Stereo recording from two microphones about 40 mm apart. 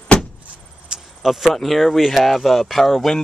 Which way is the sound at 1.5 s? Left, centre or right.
Centre.